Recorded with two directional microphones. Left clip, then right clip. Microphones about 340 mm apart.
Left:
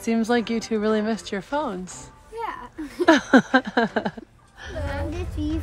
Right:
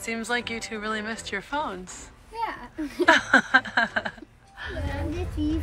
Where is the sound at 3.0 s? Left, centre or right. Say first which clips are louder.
Left 1 dB; centre.